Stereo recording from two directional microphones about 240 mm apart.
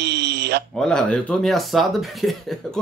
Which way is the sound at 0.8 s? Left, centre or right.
Centre.